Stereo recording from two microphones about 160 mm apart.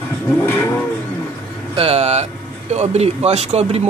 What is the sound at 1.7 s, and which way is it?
Speech, 40° right (ahead or behind).